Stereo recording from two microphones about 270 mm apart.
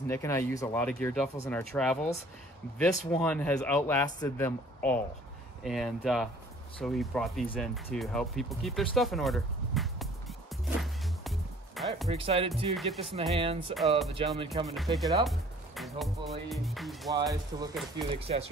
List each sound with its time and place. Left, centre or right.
0.1 s speech: centre
10.8 s music: centre
12.1 s speech: right
12.7 s speech: centre
13.1 s speech: right
14.7 s speech: centre
17.1 s speech: centre